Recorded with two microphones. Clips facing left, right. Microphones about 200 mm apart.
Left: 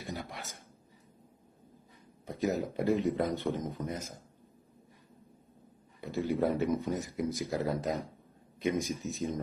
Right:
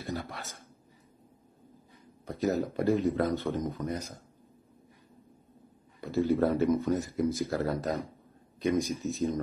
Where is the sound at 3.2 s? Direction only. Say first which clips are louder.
Right 3 dB; 15° left (ahead or behind).